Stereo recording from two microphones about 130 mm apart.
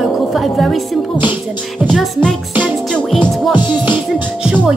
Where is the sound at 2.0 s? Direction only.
5° left (ahead or behind).